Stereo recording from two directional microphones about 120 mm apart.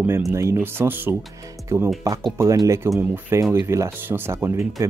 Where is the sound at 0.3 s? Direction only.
20° right (ahead or behind).